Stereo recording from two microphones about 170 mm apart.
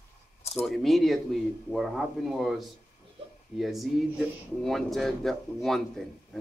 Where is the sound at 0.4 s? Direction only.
40° left (ahead or behind).